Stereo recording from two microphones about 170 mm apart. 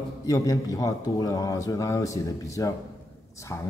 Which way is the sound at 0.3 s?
20° left (ahead or behind).